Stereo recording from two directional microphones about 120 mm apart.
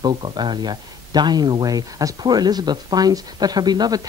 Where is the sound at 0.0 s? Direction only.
40° right (ahead or behind).